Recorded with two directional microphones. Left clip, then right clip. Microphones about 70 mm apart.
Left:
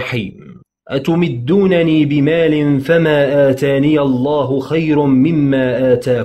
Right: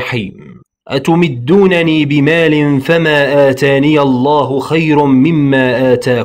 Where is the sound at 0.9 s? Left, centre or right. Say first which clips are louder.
Right 4 dB; right.